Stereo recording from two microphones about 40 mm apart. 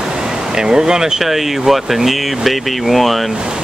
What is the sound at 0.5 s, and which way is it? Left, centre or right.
Speech, centre.